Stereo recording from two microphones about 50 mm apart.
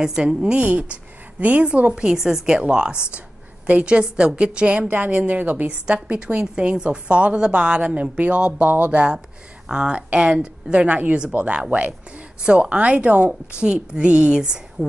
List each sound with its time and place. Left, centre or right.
0.0 s a woman's voice: centre
0.4 s a woman's voice: right
2.0 s a woman's voice: centre; by 5.7 s right
5.7 s a woman's voice: right
9.7 s a woman's voice: centre